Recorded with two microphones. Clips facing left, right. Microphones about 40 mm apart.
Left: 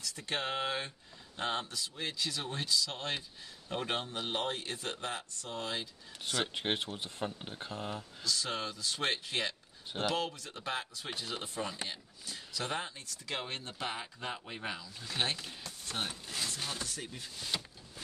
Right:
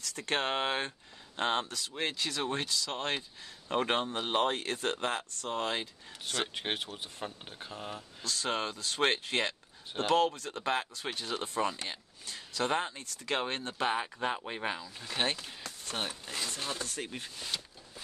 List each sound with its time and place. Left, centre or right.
0.0 s speech: right
6.5 s speech: centre
8.2 s speech: right
15.6 s a sound: right
16.4 s speech: right
16.8 s speech: right
17.5 s a sound: centre